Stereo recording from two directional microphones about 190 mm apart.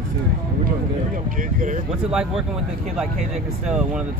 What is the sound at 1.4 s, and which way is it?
Speech, 45° right (ahead or behind).